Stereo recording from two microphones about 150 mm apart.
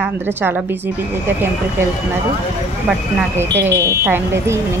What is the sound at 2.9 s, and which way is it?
Speech, 5° right (ahead or behind).